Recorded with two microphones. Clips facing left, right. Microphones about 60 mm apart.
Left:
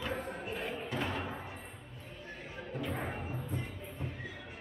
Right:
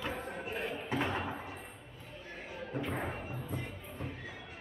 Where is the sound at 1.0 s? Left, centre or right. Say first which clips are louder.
Right 2 dB; right.